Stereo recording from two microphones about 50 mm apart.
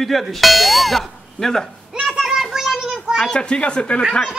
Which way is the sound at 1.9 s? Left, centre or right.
Centre.